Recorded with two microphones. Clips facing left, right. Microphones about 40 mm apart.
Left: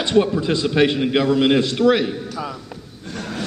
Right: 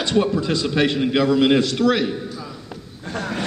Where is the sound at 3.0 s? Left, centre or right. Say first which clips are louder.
Right 3 dB; centre.